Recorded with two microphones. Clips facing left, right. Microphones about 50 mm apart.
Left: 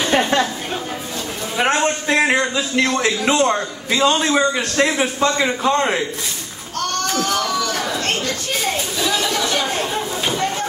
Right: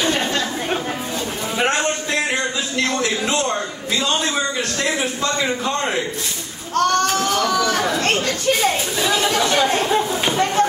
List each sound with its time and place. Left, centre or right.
0.1 s chatter: left
1.7 s a man's voice: left
6.7 s speech: right